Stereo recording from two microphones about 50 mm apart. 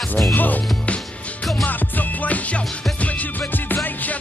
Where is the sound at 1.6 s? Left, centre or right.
Left.